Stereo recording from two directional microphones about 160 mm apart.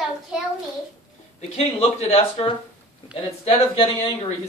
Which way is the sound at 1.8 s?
40° left (ahead or behind).